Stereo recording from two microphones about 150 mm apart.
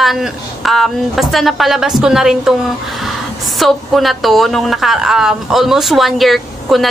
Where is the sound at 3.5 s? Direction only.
Centre (ahead or behind).